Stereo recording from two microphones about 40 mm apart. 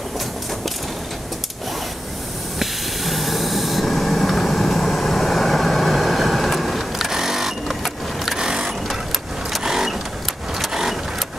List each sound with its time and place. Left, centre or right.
2.6 s hiss: centre
7.1 s sewing machine: centre
8.4 s vehicle: centre